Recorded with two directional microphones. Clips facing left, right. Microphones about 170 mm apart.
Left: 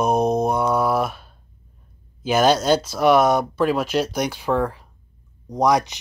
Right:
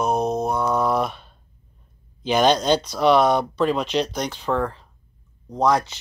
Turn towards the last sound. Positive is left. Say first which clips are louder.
# left 1 dB
turn(degrees=15)  # may be behind; listen again after turning